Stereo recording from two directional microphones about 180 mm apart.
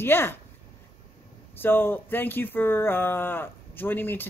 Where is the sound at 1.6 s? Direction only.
10° left (ahead or behind).